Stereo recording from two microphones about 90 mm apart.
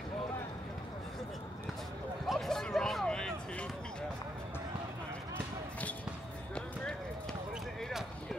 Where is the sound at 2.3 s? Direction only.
5° left (ahead or behind).